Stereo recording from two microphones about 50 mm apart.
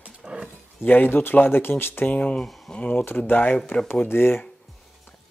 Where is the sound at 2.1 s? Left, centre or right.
Left.